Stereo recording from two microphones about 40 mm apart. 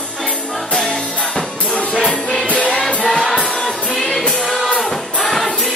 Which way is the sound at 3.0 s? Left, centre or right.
Centre.